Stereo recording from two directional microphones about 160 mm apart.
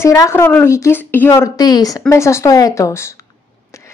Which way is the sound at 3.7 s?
20° left (ahead or behind).